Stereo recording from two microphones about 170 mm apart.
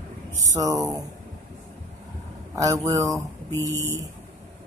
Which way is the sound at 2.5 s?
20° right (ahead or behind).